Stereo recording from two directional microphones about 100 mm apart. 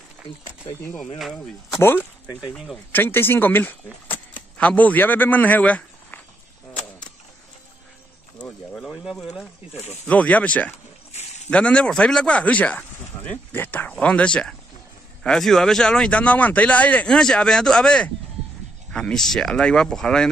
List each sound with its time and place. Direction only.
1.1 s speech: centre (ahead or behind)
1.8 s speech: 20° left (ahead or behind)
2.5 s speech: centre (ahead or behind)
2.9 s speech: 20° left (ahead or behind)
8.5 s a sound: 10° left (ahead or behind)
10.0 s speech: 15° left (ahead or behind)
11.1 s a sound: 90° left
11.5 s speech: 10° left (ahead or behind)